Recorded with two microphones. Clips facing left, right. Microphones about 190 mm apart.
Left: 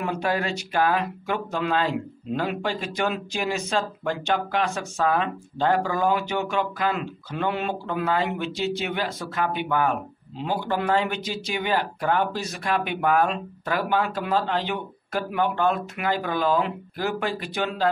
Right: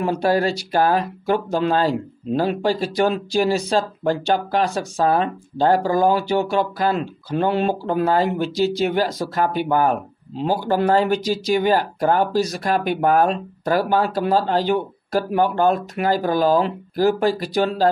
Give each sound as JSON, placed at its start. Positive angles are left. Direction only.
{"t": 0.0, "sound": "speech", "side_deg": -35}